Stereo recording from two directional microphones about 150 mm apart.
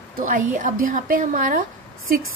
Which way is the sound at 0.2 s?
60° right (ahead or behind).